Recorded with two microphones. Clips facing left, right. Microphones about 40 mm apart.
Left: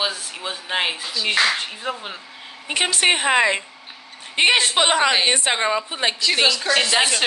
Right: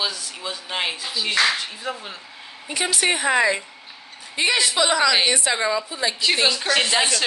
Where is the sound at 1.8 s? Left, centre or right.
Left.